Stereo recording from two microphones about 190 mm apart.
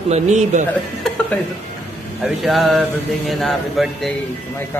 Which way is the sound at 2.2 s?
Centre (ahead or behind).